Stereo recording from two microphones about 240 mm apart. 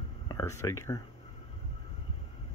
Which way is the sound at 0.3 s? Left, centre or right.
Centre.